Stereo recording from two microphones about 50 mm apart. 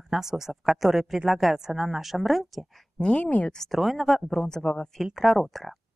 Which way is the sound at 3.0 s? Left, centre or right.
Left.